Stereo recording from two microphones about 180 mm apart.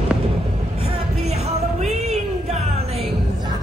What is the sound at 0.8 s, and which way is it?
Music, 35° right (ahead or behind).